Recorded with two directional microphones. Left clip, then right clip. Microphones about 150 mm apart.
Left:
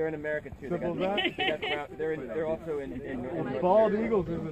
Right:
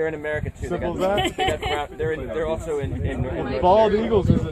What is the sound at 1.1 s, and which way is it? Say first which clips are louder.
Speech: right 7 dB; 50° right (ahead or behind).